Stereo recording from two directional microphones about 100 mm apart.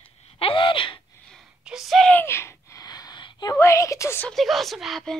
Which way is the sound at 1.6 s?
5° right (ahead or behind).